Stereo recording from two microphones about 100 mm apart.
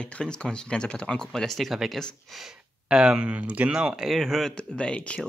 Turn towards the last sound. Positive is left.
turn(degrees=10)  # may be behind; listen again after turning